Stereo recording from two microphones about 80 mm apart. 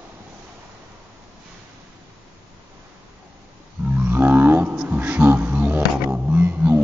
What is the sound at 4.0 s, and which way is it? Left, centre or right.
Wild animals, right.